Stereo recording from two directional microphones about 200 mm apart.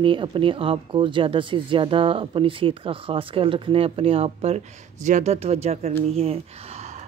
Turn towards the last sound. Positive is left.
turn(degrees=-30)  # may be behind; listen again after turning